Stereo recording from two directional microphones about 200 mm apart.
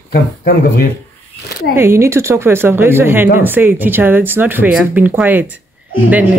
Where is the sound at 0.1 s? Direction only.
50° left (ahead or behind).